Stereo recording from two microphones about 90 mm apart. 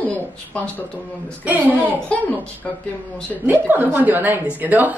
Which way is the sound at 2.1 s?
20° left (ahead or behind).